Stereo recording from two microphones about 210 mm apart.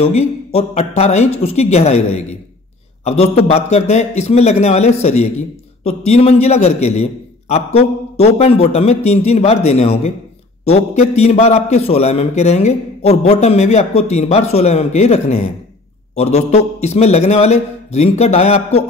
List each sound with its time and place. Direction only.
0.0 s a man's voice: 30° left (ahead or behind)